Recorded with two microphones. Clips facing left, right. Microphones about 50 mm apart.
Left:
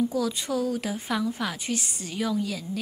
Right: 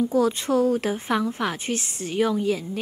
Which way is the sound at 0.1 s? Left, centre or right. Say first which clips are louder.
Right 6 dB; right.